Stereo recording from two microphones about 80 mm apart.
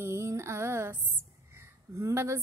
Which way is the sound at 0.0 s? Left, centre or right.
Right.